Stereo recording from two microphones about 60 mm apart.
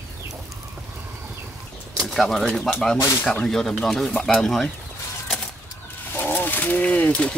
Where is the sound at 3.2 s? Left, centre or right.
Centre.